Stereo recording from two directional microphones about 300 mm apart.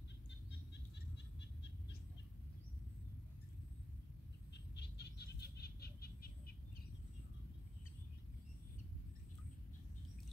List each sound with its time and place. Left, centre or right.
4.7 s bird: left